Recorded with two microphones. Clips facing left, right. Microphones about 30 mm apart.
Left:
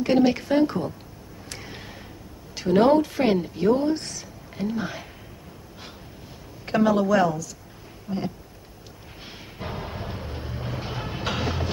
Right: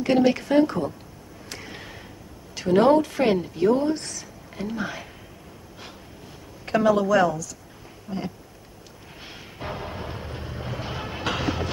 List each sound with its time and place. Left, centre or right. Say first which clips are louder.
0.0 s a woman's voice: even; centre
2.6 s a woman's voice: even; centre
3.9 s a sound: left 2 dB; centre
4.6 s a woman's voice: left 1 dB; centre
6.6 s a woman's voice: right 1 dB; centre
9.6 s train: right 1 dB; centre